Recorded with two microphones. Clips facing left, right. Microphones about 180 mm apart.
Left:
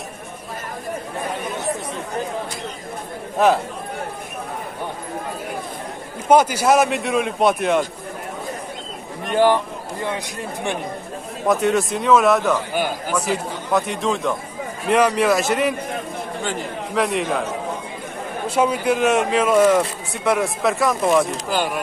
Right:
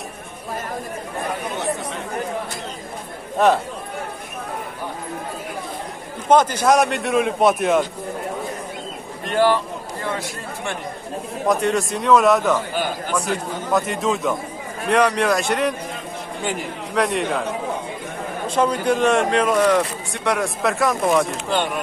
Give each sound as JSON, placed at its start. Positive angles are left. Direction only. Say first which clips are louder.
{"t": 3.3, "sound": "speech", "louder": "even", "side_deg": 0}
{"t": 6.2, "sound": "speech", "louder": "left 1 dB", "side_deg": 10}
{"t": 9.2, "sound": "speech", "louder": "left 1 dB", "side_deg": 15}
{"t": 11.4, "sound": "speech", "louder": "left 2 dB", "side_deg": 0}
{"t": 16.9, "sound": "speech", "louder": "even", "side_deg": 0}
{"t": 18.5, "sound": "speech", "louder": "even", "side_deg": 5}